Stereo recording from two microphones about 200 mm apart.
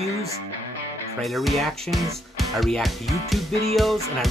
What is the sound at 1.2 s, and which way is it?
Speech, centre (ahead or behind).